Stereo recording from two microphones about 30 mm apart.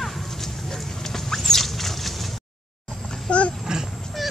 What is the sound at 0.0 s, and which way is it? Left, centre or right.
Dog, centre.